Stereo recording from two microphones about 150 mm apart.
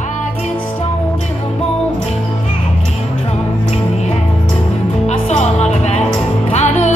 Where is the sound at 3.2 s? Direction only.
45° left (ahead or behind).